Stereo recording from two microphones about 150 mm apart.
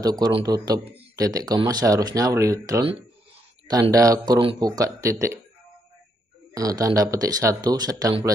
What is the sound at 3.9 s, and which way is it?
Speech, 25° right (ahead or behind).